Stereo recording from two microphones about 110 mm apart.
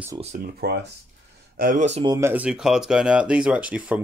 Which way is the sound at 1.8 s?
85° right.